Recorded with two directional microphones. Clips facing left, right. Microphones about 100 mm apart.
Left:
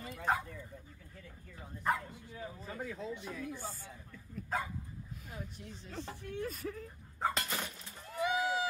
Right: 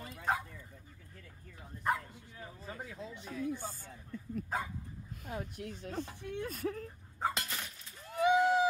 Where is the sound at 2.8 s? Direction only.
20° right (ahead or behind).